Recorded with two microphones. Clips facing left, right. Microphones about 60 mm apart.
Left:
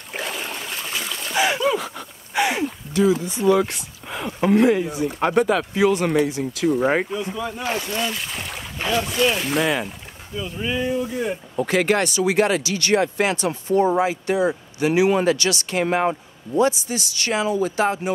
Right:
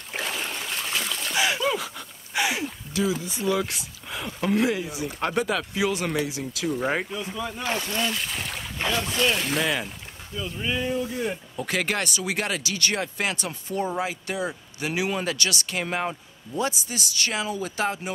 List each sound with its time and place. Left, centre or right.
0.1 s a sound: centre
3.3 s speech: centre
6.8 s speech: centre
7.2 s speech: centre
11.5 s speech: left